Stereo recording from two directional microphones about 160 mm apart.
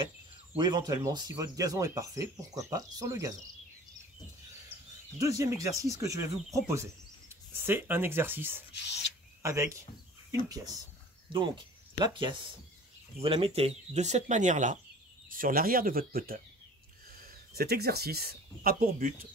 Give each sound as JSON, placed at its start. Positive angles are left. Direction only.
{"t": 0.6, "sound": "speech", "side_deg": -25}
{"t": 5.2, "sound": "speech", "side_deg": -20}
{"t": 15.2, "sound": "speech", "side_deg": -60}